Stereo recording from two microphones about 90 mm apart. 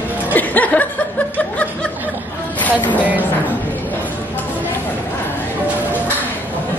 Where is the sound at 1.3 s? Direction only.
15° left (ahead or behind).